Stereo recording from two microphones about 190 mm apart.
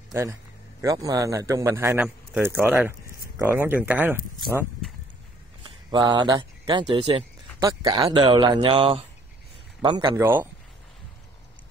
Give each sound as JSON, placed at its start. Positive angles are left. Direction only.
{"t": 0.1, "sound": "a man's voice", "side_deg": -15}
{"t": 5.9, "sound": "a man's voice", "side_deg": -25}
{"t": 10.1, "sound": "speech", "side_deg": -10}